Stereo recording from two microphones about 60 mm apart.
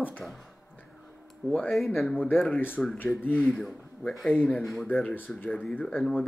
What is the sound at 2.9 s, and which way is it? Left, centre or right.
Speech, left.